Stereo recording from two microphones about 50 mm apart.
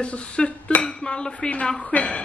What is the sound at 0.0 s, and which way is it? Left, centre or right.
Speech, left.